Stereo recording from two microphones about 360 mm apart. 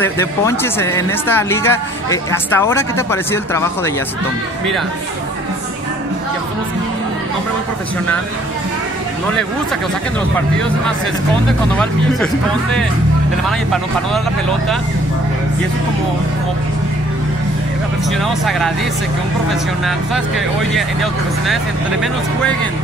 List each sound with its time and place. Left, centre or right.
0.0 s speech: centre
11.7 s speech: centre
20.7 s speech: centre